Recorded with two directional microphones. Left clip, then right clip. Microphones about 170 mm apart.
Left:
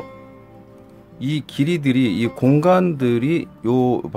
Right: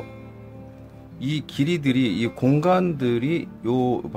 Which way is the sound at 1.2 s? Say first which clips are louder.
Left 3 dB; 10° left (ahead or behind).